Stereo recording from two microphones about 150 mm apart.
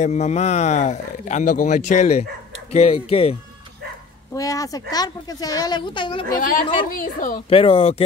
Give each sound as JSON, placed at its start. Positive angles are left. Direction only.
{"t": 0.0, "sound": "speech", "side_deg": 50}
{"t": 4.3, "sound": "a woman's voice", "side_deg": 20}
{"t": 6.3, "sound": "a woman's voice", "side_deg": 65}
{"t": 7.4, "sound": "speech", "side_deg": 40}